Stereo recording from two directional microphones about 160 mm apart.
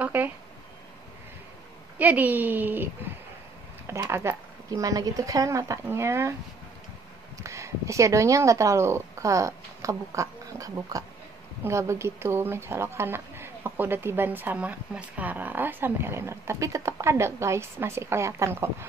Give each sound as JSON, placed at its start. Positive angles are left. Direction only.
{"t": 0.0, "sound": "a sound", "side_deg": -10}
{"t": 2.0, "sound": "a woman's voice", "side_deg": -10}
{"t": 7.4, "sound": "speech", "side_deg": -20}